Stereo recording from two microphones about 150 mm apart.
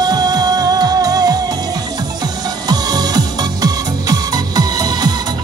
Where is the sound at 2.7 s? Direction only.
25° right (ahead or behind).